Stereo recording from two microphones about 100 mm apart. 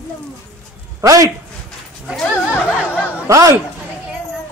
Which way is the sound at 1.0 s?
35° right (ahead or behind).